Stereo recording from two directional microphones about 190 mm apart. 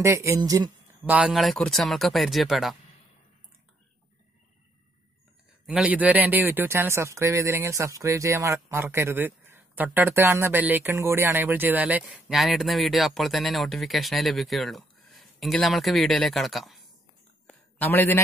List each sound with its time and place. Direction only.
0.0 s speech: 15° right (ahead or behind)
1.1 s speech: centre (ahead or behind)
5.7 s speech: 5° right (ahead or behind)
17.5 s a sound: 10° left (ahead or behind)